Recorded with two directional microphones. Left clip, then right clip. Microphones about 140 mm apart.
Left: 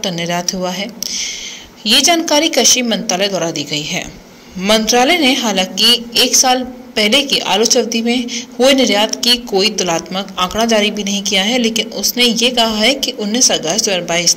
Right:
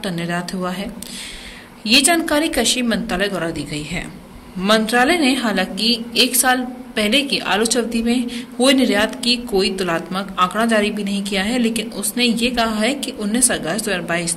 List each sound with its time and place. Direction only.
0.0 s a woman's voice: 15° left (ahead or behind)
1.9 s a woman's voice: 20° left (ahead or behind)